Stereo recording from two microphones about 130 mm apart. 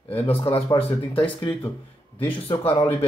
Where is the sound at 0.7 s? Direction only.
45° left (ahead or behind).